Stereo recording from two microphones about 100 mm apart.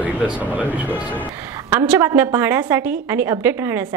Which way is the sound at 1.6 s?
20° right (ahead or behind).